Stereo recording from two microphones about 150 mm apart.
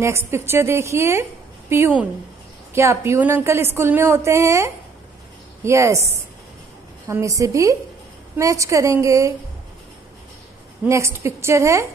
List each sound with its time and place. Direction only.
0.0 s a woman's voice: 15° right (ahead or behind)
7.1 s a woman's voice: 20° right (ahead or behind)
10.9 s a woman's voice: 20° right (ahead or behind)